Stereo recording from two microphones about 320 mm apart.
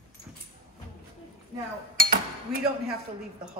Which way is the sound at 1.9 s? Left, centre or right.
Right.